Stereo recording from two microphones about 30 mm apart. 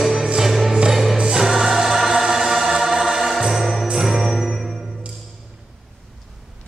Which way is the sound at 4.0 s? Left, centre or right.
Centre.